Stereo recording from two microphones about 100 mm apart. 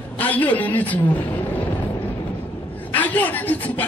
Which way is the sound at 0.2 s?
15° left (ahead or behind).